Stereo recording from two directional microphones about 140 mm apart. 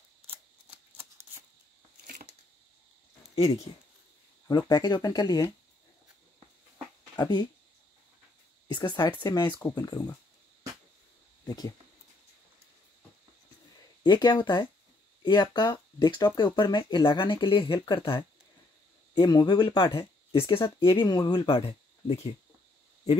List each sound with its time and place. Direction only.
0.7 s a sound: 15° right (ahead or behind)
4.5 s speech: 30° left (ahead or behind)
7.2 s speech: 30° left (ahead or behind)
8.6 s speech: 30° left (ahead or behind)
11.4 s speech: 25° left (ahead or behind)
14.0 s speech: 35° left (ahead or behind)
17.6 s speech: 25° left (ahead or behind)
17.9 s speech: 40° left (ahead or behind)